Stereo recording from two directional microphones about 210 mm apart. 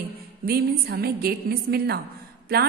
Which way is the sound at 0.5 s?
45° right (ahead or behind).